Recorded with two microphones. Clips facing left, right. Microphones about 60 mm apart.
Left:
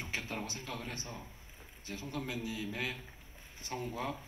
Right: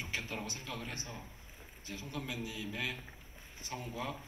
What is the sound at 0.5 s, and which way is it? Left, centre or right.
A man's voice, left.